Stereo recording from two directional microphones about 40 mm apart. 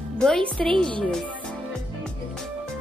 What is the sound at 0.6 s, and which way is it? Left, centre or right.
Speech, centre.